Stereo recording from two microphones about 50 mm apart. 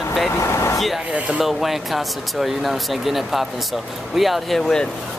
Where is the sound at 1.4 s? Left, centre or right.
Centre.